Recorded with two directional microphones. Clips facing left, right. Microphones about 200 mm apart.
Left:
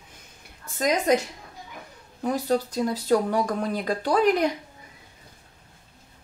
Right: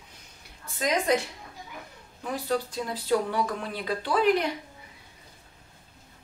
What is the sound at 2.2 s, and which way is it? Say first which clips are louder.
Speech: left 5 dB; 40° left (ahead or behind).